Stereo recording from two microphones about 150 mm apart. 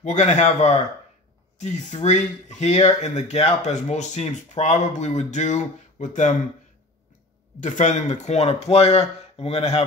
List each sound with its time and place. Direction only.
0.0 s speech: 50° left (ahead or behind)
7.6 s speech: 55° left (ahead or behind)